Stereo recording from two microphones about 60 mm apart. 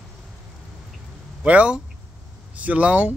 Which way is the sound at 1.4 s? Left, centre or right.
Right.